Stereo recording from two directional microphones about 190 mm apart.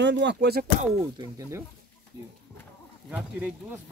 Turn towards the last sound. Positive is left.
turn(degrees=-5)  # may be behind; listen again after turning